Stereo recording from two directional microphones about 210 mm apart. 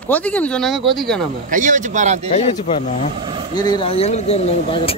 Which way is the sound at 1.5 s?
35° right (ahead or behind).